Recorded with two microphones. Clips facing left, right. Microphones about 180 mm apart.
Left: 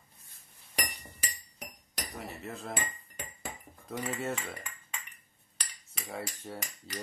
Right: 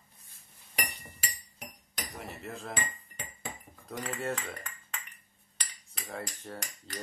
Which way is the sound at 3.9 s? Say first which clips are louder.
Even; 5° left (ahead or behind).